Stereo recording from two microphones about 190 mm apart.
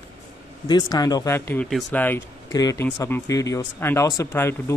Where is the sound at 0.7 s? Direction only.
20° left (ahead or behind).